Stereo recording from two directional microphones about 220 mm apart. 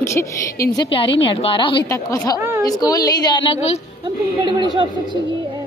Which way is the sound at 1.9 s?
15° left (ahead or behind).